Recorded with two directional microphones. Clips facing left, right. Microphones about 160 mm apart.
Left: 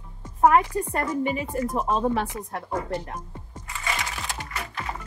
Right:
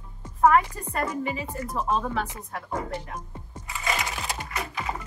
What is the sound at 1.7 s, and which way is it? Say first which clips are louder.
Speech: left 2 dB; 30° left (ahead or behind).